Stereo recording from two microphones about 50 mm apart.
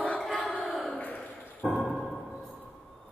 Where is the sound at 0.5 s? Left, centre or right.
Centre.